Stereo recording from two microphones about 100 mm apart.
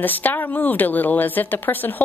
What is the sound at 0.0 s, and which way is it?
A woman's voice, 20° left (ahead or behind).